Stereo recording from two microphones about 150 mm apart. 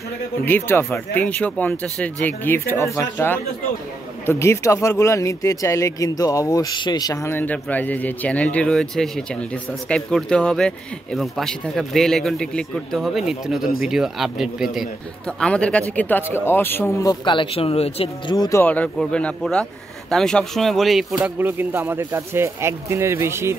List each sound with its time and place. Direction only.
0.5 s a man's voice: 15° left (ahead or behind)
17.1 s speech: 30° left (ahead or behind)
18.3 s speech: 25° left (ahead or behind)
18.6 s a man's voice: 10° left (ahead or behind)
21.2 s speech: 15° right (ahead or behind)